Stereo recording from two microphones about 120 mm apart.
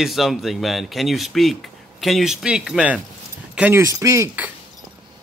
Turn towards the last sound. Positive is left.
turn(degrees=-25)  # may be behind; listen again after turning